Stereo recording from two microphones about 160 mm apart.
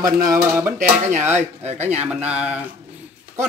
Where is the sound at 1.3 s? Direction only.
45° right (ahead or behind).